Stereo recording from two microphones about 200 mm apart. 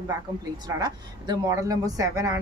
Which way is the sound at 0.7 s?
20° right (ahead or behind).